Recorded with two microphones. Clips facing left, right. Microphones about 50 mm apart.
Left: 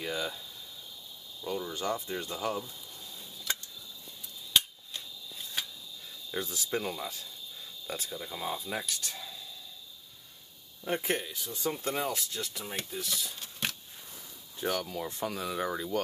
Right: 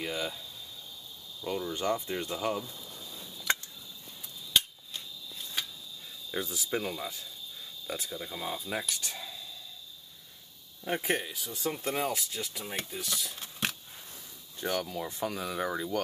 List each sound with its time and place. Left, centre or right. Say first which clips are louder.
0.0 s speech: even; centre
1.7 s speech: right 2 dB; right
2.3 s speech: right 1 dB; centre
4.6 s scissors: even; centre
6.3 s speech: even; centre
9.1 s whispering: right 1 dB; centre
10.9 s speech: right 1 dB; centre